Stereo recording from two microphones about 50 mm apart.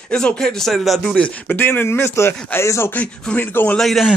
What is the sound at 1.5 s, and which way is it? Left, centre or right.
Speech, left.